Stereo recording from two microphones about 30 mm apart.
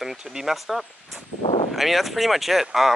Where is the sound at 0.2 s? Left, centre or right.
Right.